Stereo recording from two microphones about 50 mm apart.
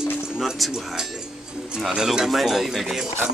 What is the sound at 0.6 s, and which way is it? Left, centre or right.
Speech, centre.